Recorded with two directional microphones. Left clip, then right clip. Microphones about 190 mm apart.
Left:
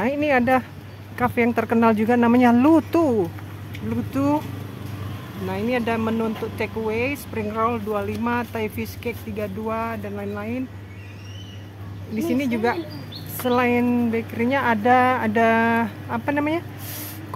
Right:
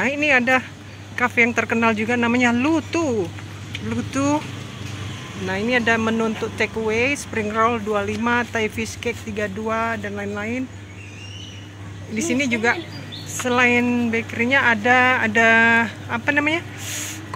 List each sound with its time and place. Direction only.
0.0 s speech: 20° left (ahead or behind)
3.9 s speech: 15° left (ahead or behind)
5.5 s speech: centre (ahead or behind)
12.2 s speech: 15° left (ahead or behind)